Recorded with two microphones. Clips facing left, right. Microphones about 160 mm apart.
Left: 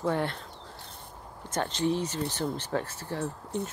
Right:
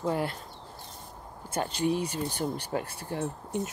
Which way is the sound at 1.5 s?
10° right (ahead or behind).